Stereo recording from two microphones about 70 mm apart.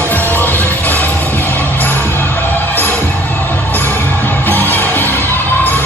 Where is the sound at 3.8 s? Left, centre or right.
Left.